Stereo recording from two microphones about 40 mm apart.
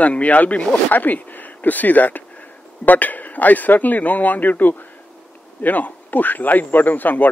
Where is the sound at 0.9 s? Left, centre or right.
Left.